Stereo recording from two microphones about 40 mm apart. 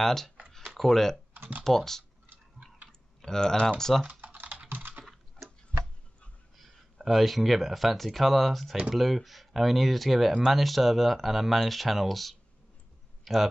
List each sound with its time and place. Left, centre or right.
0.0 s speech: centre
4.0 s typing: right
7.1 s speech: centre